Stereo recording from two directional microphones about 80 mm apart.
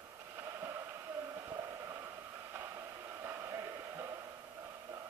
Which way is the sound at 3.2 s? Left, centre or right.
Right.